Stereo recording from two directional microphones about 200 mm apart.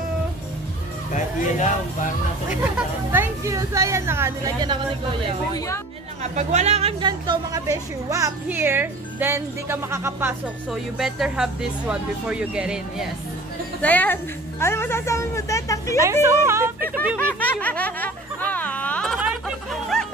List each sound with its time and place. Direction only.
3.1 s a woman's voice: 15° right (ahead or behind)
5.2 s a woman's voice: 30° right (ahead or behind); by 10.3 s 10° right (ahead or behind)
10.7 s speech: centre (ahead or behind)
13.7 s a woman's voice: 10° left (ahead or behind)
16.0 s a woman's voice: 15° right (ahead or behind)
17.2 s music: 10° left (ahead or behind)